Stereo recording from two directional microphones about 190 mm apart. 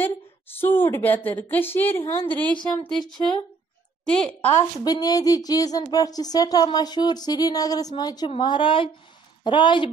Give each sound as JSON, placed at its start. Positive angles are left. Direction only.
{"t": 0.6, "sound": "a woman's voice", "side_deg": 10}
{"t": 4.8, "sound": "a woman's voice", "side_deg": 20}